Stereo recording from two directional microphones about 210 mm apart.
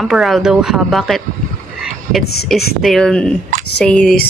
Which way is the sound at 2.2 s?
50° left (ahead or behind).